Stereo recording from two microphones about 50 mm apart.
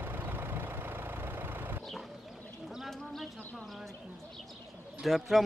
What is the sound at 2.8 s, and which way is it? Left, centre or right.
Bird, centre.